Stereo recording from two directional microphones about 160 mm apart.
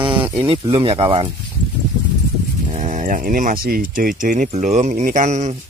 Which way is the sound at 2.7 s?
50° right (ahead or behind).